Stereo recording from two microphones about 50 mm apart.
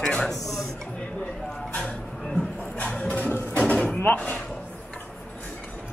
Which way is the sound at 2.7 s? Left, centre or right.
Left.